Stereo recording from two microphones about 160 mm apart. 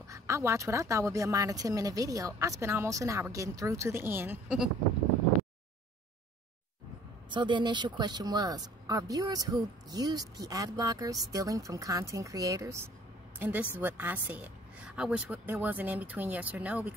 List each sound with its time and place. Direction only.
0.1 s speech: 15° right (ahead or behind)
7.2 s speech: 30° right (ahead or behind); by 16.9 s 10° right (ahead or behind)